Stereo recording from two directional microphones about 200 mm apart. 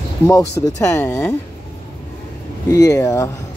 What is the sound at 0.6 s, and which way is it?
Speech, 15° left (ahead or behind).